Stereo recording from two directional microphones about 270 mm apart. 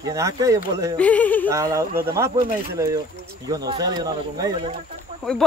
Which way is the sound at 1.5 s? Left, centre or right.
Centre.